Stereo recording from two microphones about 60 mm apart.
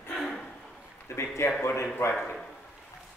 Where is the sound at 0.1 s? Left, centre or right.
Centre.